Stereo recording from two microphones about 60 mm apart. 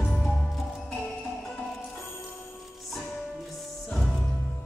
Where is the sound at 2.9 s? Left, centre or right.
Centre.